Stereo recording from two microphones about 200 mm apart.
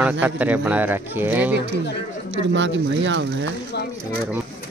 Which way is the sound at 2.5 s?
65° right (ahead or behind).